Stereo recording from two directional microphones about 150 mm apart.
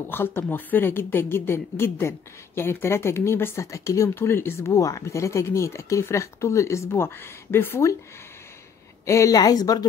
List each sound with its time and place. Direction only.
0.1 s a woman's voice: 15° left (ahead or behind)
9.0 s speech: 20° left (ahead or behind)